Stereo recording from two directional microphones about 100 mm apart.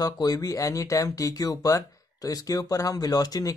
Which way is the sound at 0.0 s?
40° left (ahead or behind).